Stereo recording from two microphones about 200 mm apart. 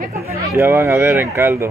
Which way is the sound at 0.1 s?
15° right (ahead or behind).